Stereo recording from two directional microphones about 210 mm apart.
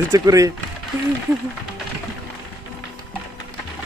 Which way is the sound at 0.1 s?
15° right (ahead or behind).